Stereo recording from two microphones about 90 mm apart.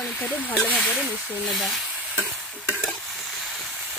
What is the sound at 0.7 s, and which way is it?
Speech, 10° left (ahead or behind).